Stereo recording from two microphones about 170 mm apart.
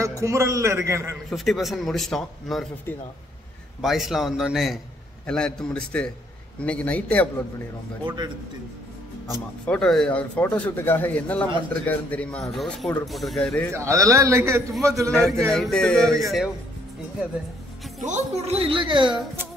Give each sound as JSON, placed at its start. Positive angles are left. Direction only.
{"t": 0.0, "sound": "a man's voice", "side_deg": -15}
{"t": 1.3, "sound": "a man's voice", "side_deg": 0}
{"t": 3.8, "sound": "a man's voice", "side_deg": 0}
{"t": 9.3, "sound": "a man's voice", "side_deg": 5}
{"t": 13.7, "sound": "a man's voice", "side_deg": -20}
{"t": 15.0, "sound": "a man's voice", "side_deg": 5}
{"t": 18.0, "sound": "a woman's voice", "side_deg": -40}
{"t": 19.0, "sound": "a man's voice", "side_deg": -5}